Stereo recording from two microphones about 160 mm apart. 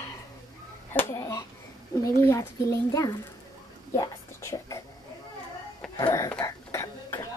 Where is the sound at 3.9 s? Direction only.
15° left (ahead or behind).